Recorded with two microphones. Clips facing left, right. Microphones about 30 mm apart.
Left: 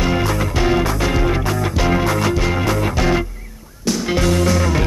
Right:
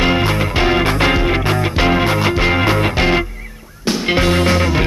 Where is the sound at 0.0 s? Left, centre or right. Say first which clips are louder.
Right 3 dB; right.